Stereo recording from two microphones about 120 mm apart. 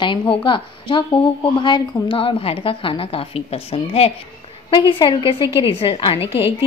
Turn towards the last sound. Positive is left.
turn(degrees=50)  # may be behind; listen again after turning